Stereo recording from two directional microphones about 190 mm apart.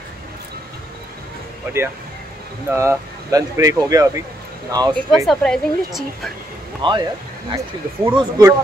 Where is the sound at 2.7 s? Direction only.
15° right (ahead or behind).